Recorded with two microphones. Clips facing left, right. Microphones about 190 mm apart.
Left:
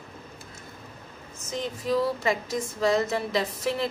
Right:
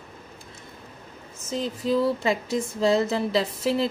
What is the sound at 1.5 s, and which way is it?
Speech, 30° right (ahead or behind).